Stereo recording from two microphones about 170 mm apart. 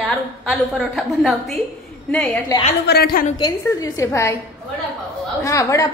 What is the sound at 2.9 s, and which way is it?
Speech, 65° left (ahead or behind).